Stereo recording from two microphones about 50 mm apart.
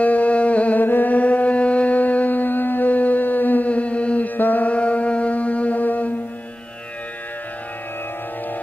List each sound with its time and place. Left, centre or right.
0.0 s music: left
0.8 s music: left
4.4 s music: left